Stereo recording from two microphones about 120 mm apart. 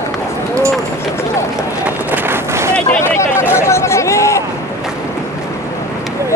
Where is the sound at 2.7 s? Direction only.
20° left (ahead or behind).